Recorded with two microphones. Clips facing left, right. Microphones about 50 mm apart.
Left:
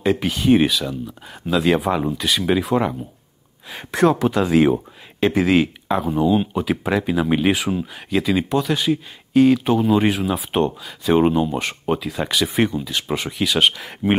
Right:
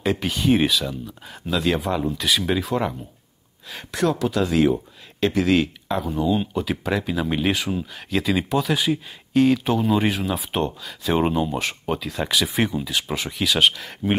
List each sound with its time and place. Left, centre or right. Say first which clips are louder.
0.0 s speech: left 3 dB; centre
1.6 s speech: left 4 dB; centre
2.1 s speech: left 3 dB; centre
3.9 s speech: left 5 dB; left; by 13.9 s centre